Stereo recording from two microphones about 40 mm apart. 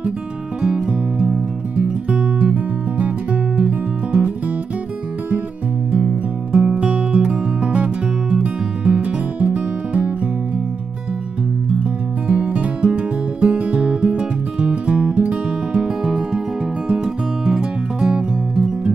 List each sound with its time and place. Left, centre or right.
0.6 s music: right
5.9 s music: right
7.8 s music: right
12.3 s music: right
15.7 s music: right